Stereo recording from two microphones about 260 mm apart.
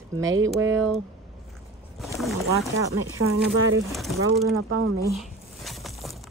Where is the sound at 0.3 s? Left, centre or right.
Right.